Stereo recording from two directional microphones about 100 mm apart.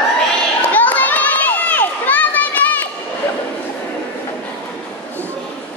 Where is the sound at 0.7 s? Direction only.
15° left (ahead or behind).